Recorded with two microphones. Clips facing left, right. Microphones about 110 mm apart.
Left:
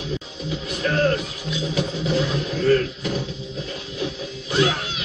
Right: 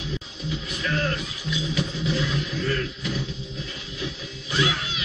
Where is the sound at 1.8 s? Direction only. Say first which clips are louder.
Left 6 dB; 40° left (ahead or behind).